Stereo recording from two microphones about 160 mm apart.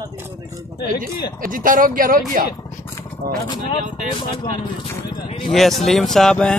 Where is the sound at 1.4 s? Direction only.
60° right (ahead or behind).